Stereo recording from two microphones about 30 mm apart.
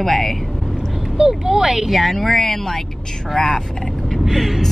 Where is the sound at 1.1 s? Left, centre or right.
Centre.